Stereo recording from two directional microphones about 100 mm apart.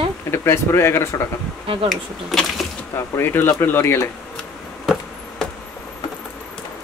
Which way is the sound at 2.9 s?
25° left (ahead or behind).